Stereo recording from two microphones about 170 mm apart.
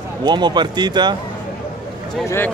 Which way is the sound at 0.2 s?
25° right (ahead or behind).